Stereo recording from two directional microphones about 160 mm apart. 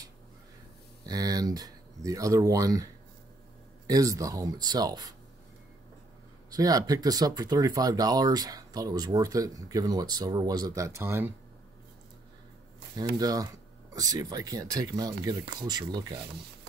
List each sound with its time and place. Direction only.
1.0 s speech: 25° right (ahead or behind)
6.5 s speech: 25° right (ahead or behind)
12.9 s speech: 25° right (ahead or behind)